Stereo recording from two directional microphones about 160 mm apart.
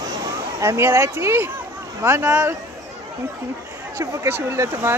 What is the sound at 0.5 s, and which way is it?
Speech, 15° right (ahead or behind).